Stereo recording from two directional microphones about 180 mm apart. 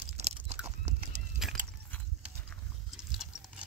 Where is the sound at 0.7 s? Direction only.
40° right (ahead or behind).